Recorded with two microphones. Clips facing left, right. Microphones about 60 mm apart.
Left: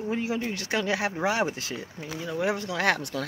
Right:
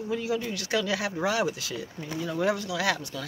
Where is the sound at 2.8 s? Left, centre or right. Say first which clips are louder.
Left 5 dB; left.